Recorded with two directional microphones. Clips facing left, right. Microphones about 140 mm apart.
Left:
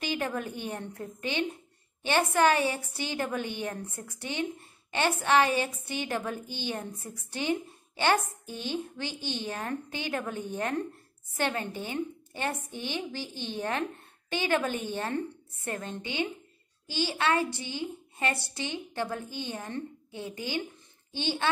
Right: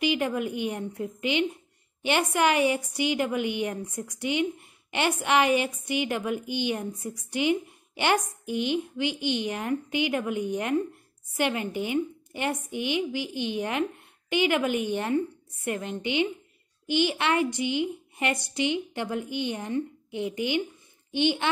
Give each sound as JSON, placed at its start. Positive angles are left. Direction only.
{"t": 0.0, "sound": "a woman's voice", "side_deg": -15}